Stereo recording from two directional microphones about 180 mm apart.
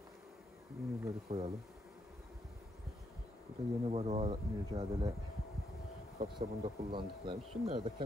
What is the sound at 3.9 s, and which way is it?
Speech, 35° right (ahead or behind).